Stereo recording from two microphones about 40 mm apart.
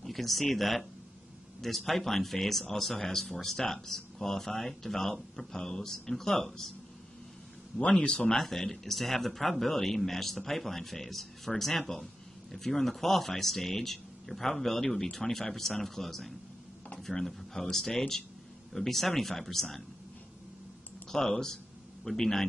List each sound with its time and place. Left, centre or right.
0.0 s a man's voice: centre
8.0 s speech: left
8.4 s a man's voice: centre
21.1 s a man's voice: centre